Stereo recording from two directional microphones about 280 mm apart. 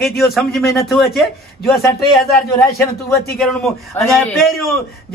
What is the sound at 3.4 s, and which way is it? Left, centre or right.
A man's voice, centre.